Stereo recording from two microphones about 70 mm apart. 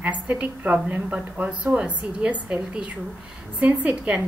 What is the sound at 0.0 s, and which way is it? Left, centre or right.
A woman's voice, centre.